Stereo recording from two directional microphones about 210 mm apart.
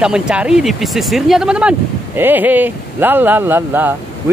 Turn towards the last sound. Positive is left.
turn(degrees=-10)  # may be behind; listen again after turning